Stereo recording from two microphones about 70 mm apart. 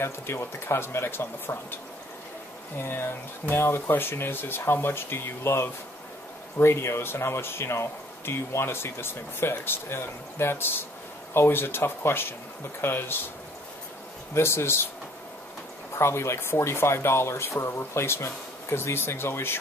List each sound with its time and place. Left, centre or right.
0.0 s speech: left
2.8 s speech: left
14.3 s speech: left
16.0 s speech: left